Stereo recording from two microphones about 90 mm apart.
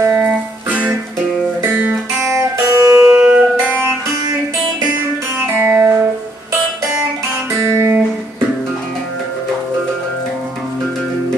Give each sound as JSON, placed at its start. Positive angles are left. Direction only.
{"t": 0.1, "sound": "music", "side_deg": -10}
{"t": 2.3, "sound": "music", "side_deg": -35}
{"t": 3.2, "sound": "music", "side_deg": -15}
{"t": 5.6, "sound": "music", "side_deg": -20}
{"t": 7.6, "sound": "guitar", "side_deg": -30}